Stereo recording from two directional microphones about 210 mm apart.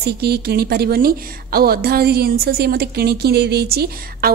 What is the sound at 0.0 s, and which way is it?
A woman's voice, 50° right (ahead or behind).